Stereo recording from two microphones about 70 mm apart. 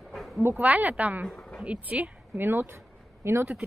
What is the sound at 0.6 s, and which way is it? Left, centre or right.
Speech, right.